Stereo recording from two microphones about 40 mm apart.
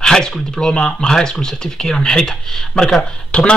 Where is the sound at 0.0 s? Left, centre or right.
Centre.